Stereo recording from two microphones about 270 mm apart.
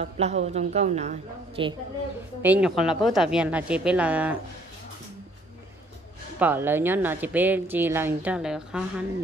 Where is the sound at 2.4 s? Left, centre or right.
Centre.